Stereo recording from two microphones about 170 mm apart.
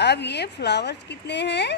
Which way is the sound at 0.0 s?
80° left.